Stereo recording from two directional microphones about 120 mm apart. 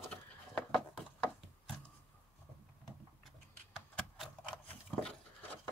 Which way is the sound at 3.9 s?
5° left (ahead or behind).